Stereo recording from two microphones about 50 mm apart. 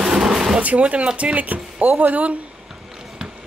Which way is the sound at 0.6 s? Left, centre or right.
Right.